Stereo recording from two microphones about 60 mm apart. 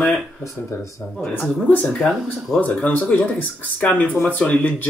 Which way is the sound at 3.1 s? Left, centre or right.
Left.